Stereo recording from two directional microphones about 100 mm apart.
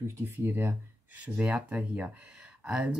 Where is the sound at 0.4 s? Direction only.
25° right (ahead or behind).